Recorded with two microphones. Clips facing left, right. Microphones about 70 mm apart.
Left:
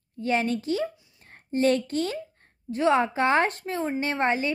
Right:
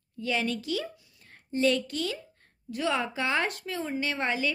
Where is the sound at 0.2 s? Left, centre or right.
Left.